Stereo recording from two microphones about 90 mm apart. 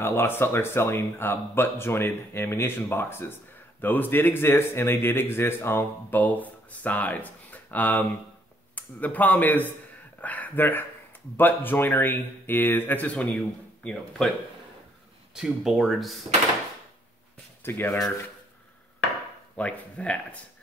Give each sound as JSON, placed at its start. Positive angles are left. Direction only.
{"t": 0.0, "sound": "a man's voice", "side_deg": 25}
{"t": 15.3, "sound": "speech", "side_deg": -5}
{"t": 17.6, "sound": "a man's voice", "side_deg": 25}
{"t": 19.5, "sound": "speech", "side_deg": 15}